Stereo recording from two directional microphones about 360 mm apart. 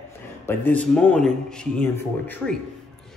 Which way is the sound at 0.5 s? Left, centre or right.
Centre.